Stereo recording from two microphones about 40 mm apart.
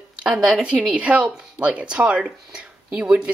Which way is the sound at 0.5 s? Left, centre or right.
Right.